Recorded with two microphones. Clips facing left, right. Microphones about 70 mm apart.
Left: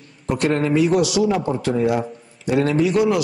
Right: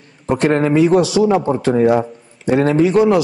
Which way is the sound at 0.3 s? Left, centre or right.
Right.